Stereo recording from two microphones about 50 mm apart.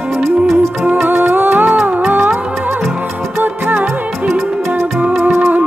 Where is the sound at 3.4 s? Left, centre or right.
Right.